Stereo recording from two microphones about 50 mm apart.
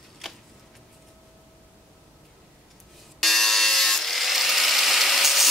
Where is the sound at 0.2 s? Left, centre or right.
Centre.